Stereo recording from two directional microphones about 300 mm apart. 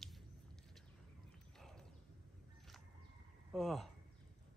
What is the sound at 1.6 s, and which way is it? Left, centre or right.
Horse, centre.